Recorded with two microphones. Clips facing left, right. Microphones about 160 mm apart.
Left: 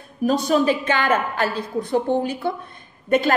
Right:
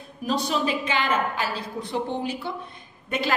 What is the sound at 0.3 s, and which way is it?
A woman's voice, 50° left (ahead or behind).